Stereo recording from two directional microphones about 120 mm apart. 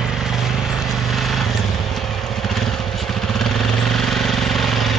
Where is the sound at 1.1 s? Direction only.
Centre (ahead or behind).